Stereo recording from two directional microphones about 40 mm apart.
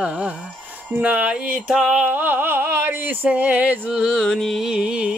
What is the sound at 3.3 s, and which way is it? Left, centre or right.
Music, right.